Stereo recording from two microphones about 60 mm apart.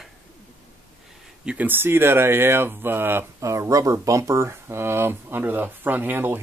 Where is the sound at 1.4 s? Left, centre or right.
Right.